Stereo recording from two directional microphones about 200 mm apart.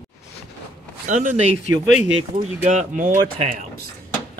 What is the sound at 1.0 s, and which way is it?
Speech, 40° right (ahead or behind).